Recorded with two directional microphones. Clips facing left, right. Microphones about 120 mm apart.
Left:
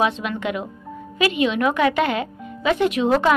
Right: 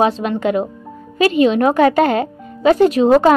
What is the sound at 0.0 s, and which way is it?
A woman's voice, 35° right (ahead or behind).